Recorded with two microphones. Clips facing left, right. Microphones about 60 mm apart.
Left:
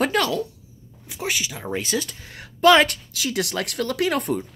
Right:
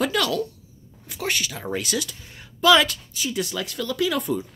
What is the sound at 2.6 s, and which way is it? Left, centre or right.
Speech, left.